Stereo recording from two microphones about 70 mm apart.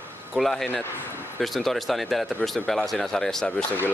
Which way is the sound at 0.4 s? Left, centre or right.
Centre.